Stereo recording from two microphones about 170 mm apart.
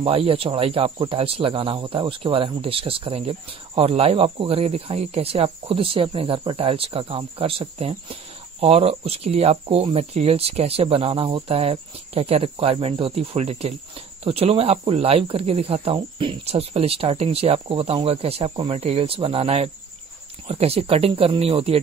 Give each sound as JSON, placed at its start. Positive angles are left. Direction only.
{"t": 0.0, "sound": "speech", "side_deg": -35}